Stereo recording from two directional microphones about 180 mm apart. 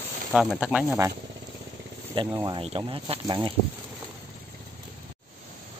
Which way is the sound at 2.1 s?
25° right (ahead or behind).